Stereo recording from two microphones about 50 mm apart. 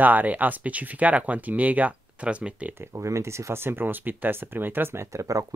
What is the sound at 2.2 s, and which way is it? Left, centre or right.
Speech, right.